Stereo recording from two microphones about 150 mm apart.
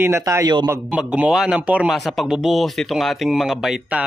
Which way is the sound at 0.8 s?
10° right (ahead or behind).